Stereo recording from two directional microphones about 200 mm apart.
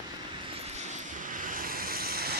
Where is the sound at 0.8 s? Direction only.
35° right (ahead or behind).